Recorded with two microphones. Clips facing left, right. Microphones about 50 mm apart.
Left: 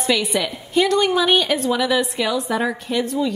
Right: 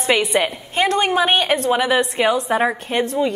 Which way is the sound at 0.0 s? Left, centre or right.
Right.